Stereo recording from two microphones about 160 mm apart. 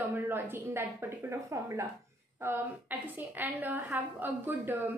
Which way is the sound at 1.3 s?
20° right (ahead or behind).